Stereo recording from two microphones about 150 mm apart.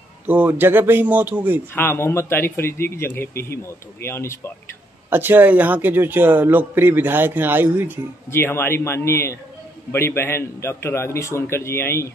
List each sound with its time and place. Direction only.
0.3 s a man's voice: 10° right (ahead or behind)
1.7 s a man's voice: 15° left (ahead or behind)
5.1 s a man's voice: 15° right (ahead or behind)
8.3 s a man's voice: 15° left (ahead or behind)